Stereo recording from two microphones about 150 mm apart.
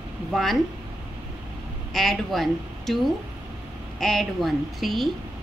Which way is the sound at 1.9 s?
Centre (ahead or behind).